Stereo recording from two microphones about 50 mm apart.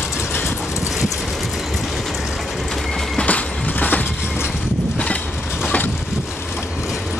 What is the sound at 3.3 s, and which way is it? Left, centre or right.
Train, left.